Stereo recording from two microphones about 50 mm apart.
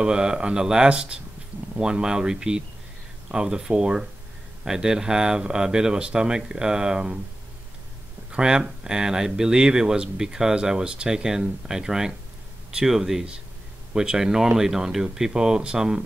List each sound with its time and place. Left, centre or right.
0.0 s speech: centre
8.3 s speech: centre